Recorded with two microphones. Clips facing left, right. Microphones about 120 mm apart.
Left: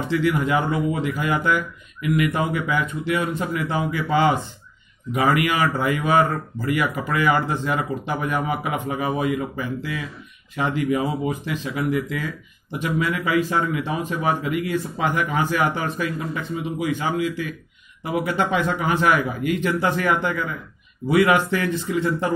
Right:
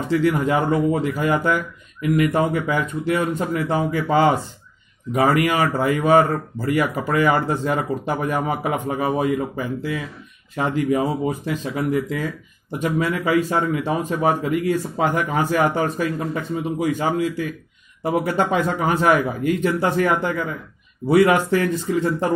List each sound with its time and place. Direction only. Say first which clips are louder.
0.1 s speech: right 2 dB; 40° right (ahead or behind)